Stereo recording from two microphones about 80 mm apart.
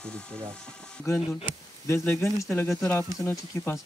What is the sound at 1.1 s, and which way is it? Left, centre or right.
Speech, left.